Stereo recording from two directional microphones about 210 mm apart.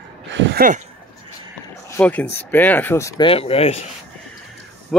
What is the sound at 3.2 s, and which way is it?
Speech, 25° left (ahead or behind).